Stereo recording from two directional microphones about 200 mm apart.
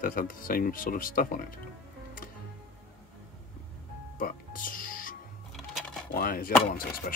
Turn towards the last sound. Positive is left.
turn(degrees=45)  # may be behind; listen again after turning